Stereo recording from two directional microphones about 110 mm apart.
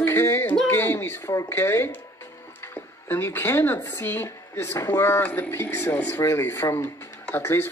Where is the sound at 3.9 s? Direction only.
20° left (ahead or behind).